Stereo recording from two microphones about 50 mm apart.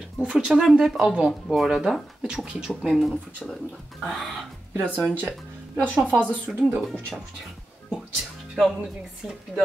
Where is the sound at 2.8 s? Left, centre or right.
Centre.